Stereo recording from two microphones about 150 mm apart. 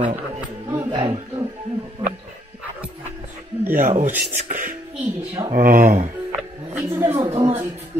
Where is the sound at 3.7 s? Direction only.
55° right (ahead or behind).